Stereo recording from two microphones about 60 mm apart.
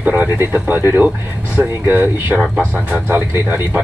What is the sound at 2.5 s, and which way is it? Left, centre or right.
Speech, right.